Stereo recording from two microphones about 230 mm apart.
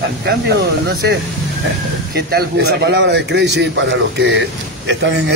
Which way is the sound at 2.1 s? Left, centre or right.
Right.